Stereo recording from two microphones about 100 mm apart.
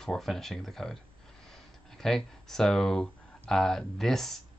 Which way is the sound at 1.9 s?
5° left (ahead or behind).